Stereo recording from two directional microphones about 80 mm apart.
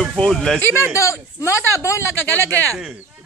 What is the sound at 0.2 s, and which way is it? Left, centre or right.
Speech, centre.